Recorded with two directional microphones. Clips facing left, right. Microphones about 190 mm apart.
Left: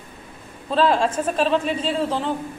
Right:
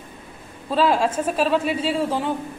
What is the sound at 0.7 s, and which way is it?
A woman's voice, 5° right (ahead or behind).